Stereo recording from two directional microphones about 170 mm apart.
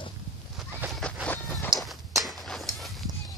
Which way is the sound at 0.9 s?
10° left (ahead or behind).